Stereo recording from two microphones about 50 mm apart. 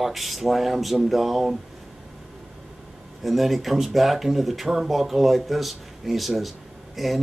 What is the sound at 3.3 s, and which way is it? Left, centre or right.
A man's voice, centre.